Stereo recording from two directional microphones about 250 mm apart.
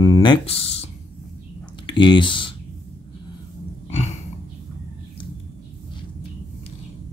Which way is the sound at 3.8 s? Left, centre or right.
Left.